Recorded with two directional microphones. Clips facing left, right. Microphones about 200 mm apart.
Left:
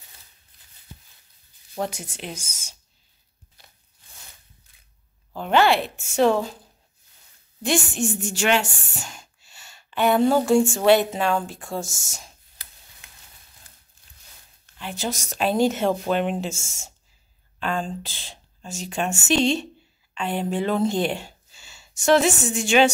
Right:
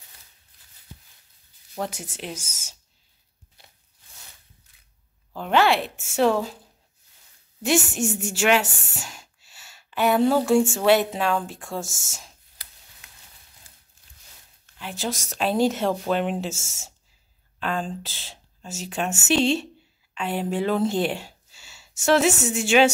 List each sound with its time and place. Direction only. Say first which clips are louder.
1.8 s a woman's voice: left 2 dB; centre (ahead or behind)
3.6 s wood: right 1 dB; 25° right (ahead or behind)
5.3 s a woman's voice: left 1 dB; centre (ahead or behind)
7.6 s a woman's voice: right 1 dB; 5° right (ahead or behind)
14.8 s a woman's voice: left 1 dB; centre (ahead or behind)